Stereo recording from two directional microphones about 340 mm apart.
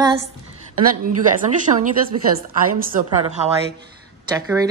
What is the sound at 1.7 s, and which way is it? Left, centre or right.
A woman's voice, centre.